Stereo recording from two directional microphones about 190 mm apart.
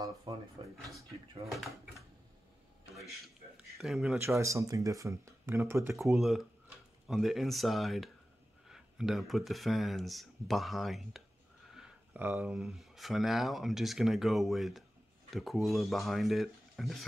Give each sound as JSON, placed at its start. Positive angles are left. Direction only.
{"t": 0.0, "sound": "speech", "side_deg": -20}
{"t": 3.7, "sound": "speech", "side_deg": 0}
{"t": 4.4, "sound": "speech", "side_deg": -15}
{"t": 5.9, "sound": "speech", "side_deg": 0}